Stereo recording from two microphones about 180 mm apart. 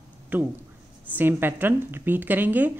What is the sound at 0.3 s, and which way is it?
Speech, 10° right (ahead or behind).